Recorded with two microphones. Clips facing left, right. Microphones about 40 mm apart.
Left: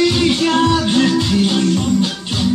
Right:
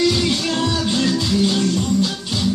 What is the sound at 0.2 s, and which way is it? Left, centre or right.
Music, left.